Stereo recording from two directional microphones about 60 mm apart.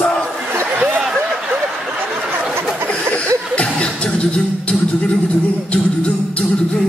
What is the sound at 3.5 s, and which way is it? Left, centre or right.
Music, centre.